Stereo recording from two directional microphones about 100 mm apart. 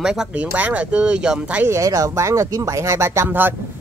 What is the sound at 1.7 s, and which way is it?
Speech, 35° right (ahead or behind).